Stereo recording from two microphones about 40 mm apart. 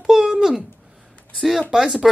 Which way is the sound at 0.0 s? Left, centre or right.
Centre.